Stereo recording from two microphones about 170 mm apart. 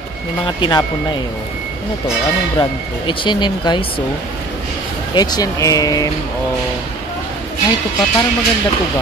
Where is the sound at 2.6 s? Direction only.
30° left (ahead or behind).